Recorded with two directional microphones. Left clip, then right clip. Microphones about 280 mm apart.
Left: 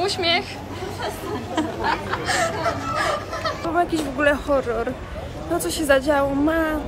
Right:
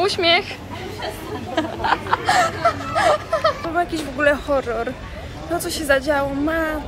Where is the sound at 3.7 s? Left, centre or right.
Centre.